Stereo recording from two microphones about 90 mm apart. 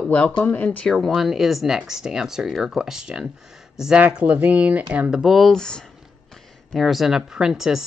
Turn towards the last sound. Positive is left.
turn(degrees=-5)  # may be behind; listen again after turning